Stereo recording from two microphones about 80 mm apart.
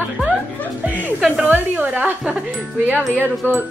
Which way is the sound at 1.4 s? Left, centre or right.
Right.